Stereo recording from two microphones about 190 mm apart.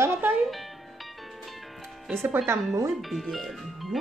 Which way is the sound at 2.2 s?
10° right (ahead or behind).